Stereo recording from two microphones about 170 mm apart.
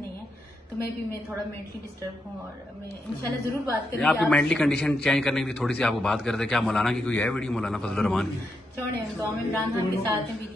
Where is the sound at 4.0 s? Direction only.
Centre (ahead or behind).